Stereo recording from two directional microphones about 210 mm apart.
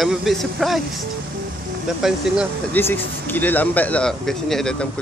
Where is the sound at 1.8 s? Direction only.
5° right (ahead or behind).